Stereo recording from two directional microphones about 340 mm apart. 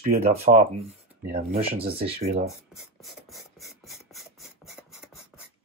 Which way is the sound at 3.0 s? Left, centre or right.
Centre.